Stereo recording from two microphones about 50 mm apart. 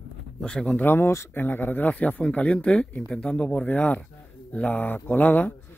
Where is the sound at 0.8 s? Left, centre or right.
Left.